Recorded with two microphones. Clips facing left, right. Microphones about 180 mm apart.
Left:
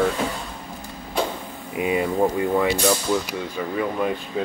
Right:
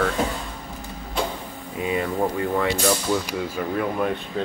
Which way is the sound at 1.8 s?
10° left (ahead or behind).